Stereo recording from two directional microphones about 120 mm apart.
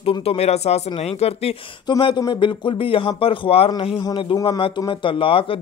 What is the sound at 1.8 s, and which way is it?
Speech, 40° left (ahead or behind).